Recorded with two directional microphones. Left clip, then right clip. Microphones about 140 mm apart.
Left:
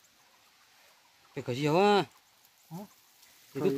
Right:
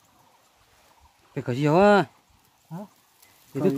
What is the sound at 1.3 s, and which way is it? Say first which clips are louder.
Speech: right 6 dB; 85° right.